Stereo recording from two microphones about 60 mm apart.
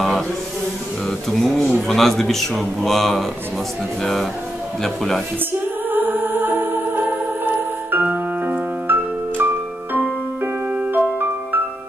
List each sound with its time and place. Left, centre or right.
1.3 s a man's voice: centre
5.5 s music: right